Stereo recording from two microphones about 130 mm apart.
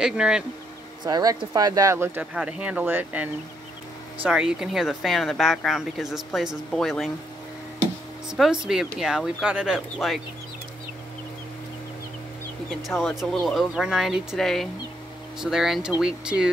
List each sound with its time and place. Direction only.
0.0 s speech: 5° right (ahead or behind)
1.0 s speech: 30° right (ahead or behind)
2.3 s speech: 10° right (ahead or behind)
8.3 s speech: 5° right (ahead or behind)
12.8 s speech: centre (ahead or behind)